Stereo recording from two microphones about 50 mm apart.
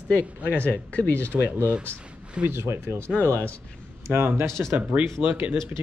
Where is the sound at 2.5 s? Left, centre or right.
Right.